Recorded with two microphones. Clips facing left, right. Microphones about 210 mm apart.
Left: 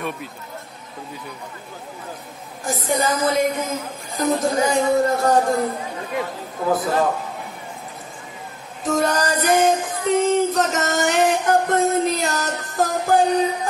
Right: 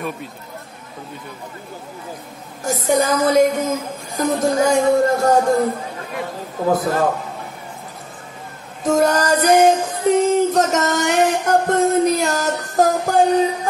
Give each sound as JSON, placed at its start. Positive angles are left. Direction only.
{"t": 2.6, "sound": "music", "side_deg": -45}
{"t": 6.7, "sound": "music", "side_deg": -45}
{"t": 8.8, "sound": "music", "side_deg": -45}